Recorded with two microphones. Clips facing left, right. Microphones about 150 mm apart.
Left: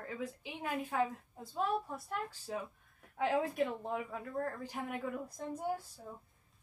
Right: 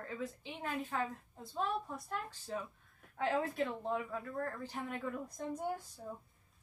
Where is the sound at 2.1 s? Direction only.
10° left (ahead or behind).